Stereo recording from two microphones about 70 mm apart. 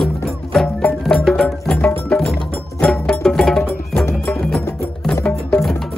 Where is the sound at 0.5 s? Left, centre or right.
Centre.